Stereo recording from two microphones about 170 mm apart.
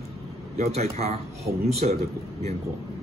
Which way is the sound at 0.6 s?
40° right (ahead or behind).